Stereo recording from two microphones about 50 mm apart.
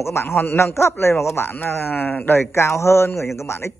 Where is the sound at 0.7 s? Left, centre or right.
Left.